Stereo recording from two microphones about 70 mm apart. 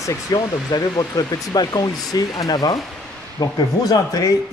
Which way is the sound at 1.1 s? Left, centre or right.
Left.